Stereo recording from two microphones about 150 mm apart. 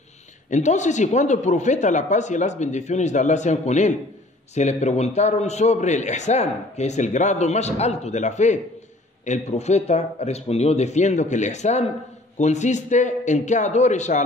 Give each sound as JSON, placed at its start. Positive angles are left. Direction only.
{"t": 0.5, "sound": "a man's voice", "side_deg": 50}